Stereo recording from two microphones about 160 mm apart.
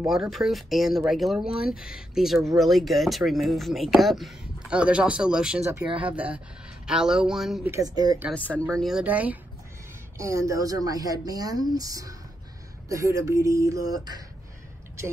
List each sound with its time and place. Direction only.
0.0 s speech: centre (ahead or behind)
7.7 s speech: 25° right (ahead or behind)
8.3 s speech: 10° left (ahead or behind)
8.7 s speech: centre (ahead or behind); by 14.2 s 25° right (ahead or behind)